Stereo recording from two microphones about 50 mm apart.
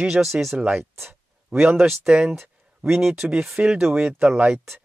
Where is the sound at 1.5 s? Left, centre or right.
Right.